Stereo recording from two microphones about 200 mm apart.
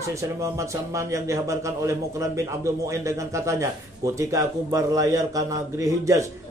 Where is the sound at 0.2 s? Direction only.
15° right (ahead or behind).